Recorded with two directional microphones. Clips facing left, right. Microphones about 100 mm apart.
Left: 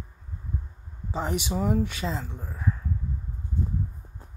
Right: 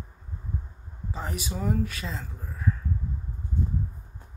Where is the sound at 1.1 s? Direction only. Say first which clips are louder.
Left 6 dB; 25° left (ahead or behind).